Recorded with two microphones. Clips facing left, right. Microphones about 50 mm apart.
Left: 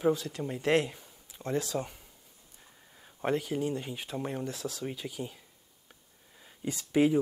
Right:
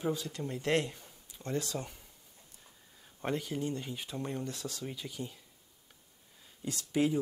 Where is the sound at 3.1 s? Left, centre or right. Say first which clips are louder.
Left 5 dB; centre.